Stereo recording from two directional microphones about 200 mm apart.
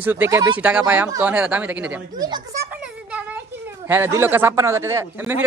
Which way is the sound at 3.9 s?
10° right (ahead or behind).